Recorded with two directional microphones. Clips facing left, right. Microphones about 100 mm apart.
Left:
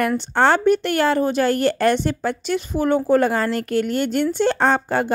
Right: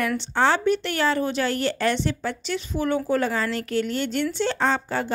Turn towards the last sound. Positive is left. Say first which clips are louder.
# left 5 dB
turn(degrees=55)  # may be behind; listen again after turning